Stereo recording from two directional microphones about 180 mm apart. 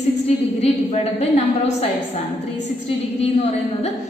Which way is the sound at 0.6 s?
35° left (ahead or behind).